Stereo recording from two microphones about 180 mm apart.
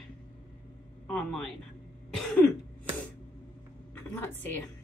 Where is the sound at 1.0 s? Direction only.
5° left (ahead or behind).